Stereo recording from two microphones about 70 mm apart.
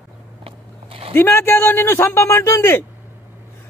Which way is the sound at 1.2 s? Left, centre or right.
Left.